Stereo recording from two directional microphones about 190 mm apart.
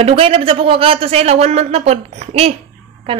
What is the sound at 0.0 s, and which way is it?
Speech, 30° right (ahead or behind).